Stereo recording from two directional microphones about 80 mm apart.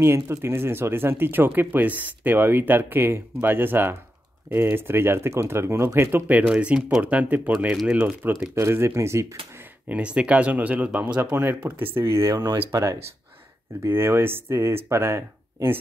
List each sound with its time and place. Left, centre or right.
0.0 s speech: right
6.5 s speech: centre
7.8 s speech: centre
8.5 s speech: right
9.8 s speech: centre
11.8 s speech: right
12.7 s speech: right
13.8 s speech: right